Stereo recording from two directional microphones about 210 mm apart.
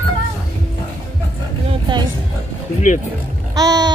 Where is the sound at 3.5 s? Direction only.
20° right (ahead or behind).